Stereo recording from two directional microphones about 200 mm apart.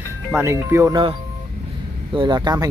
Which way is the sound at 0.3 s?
10° right (ahead or behind).